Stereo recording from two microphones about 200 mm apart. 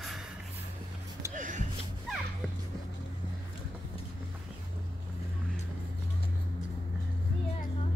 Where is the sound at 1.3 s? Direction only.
40° right (ahead or behind).